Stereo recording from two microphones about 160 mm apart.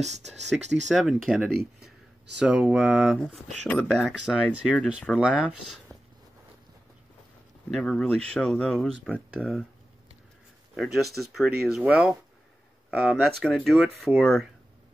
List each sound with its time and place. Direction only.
0.6 s speech: 45° right (ahead or behind)
0.8 s speech: centre (ahead or behind)
7.7 s speech: 5° left (ahead or behind)
11.1 s speech: centre (ahead or behind)